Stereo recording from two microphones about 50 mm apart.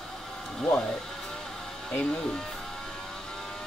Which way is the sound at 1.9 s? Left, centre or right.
Centre.